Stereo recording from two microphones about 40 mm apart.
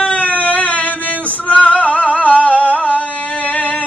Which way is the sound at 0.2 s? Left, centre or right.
Left.